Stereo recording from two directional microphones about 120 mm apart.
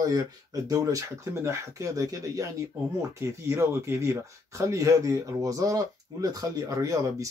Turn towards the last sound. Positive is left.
turn(degrees=-30)  # may be behind; listen again after turning